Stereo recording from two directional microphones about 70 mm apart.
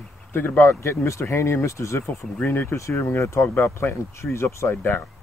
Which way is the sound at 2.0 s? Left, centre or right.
Left.